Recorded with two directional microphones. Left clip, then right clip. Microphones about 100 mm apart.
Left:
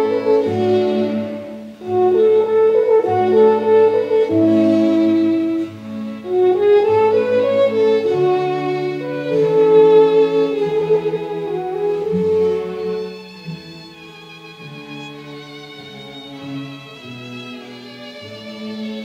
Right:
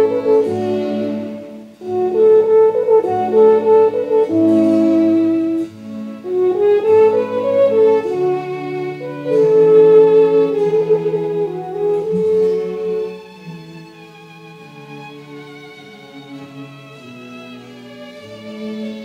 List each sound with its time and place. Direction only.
0.0 s music: 40° right (ahead or behind)
1.9 s french horn: 35° right (ahead or behind)
6.4 s music: 40° right (ahead or behind)
18.6 s music: 40° right (ahead or behind)